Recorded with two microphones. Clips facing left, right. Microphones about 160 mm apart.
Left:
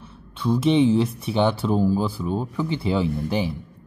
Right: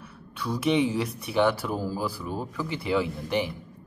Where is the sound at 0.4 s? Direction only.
25° left (ahead or behind).